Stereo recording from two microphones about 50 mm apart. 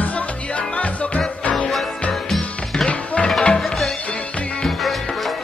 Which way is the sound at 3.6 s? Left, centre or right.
Centre.